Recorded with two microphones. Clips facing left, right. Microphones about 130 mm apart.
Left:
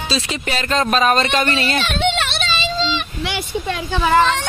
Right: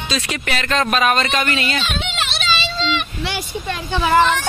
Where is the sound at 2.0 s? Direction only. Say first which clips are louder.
Left 6 dB; 55° left (ahead or behind).